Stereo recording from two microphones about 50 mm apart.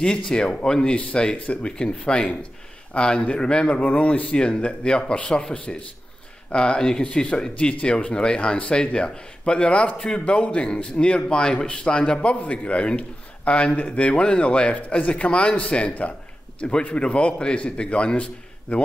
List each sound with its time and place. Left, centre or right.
0.0 s speech: centre